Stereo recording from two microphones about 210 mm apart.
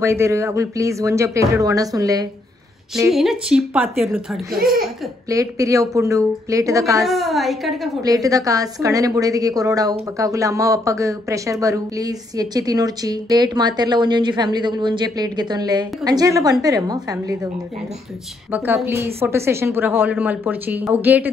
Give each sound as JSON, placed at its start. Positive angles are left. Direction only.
{"t": 0.0, "sound": "speech", "side_deg": -15}
{"t": 3.1, "sound": "a woman's voice", "side_deg": 0}
{"t": 5.3, "sound": "speech", "side_deg": -15}
{"t": 7.1, "sound": "a woman's voice", "side_deg": 0}
{"t": 8.0, "sound": "speech", "side_deg": -15}
{"t": 18.5, "sound": "speech", "side_deg": -10}